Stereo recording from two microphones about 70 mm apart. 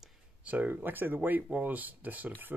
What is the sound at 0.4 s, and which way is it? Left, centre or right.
Speech, right.